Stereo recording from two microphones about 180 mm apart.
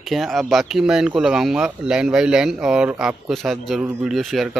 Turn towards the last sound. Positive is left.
turn(degrees=0)  # may be behind; listen again after turning